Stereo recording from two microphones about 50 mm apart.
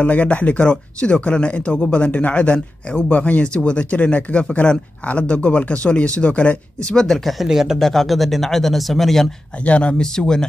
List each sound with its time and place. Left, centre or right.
0.0 s speech: left
7.0 s speech: centre
7.4 s speech: centre
7.8 s speech: centre
9.7 s speech: left